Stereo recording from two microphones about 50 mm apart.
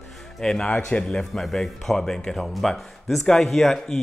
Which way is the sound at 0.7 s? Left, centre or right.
Left.